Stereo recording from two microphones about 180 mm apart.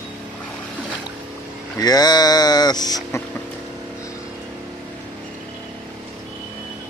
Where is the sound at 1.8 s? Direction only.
20° left (ahead or behind).